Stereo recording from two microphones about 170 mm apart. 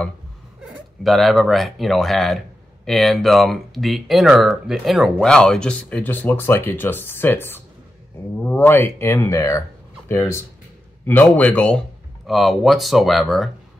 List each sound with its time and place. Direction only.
1.0 s speech: centre (ahead or behind)